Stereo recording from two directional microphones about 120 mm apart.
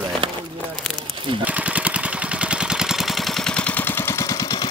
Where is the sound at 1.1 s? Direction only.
45° right (ahead or behind).